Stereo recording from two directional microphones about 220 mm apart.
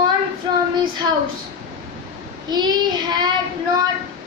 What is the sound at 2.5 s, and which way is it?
Speech, 20° right (ahead or behind).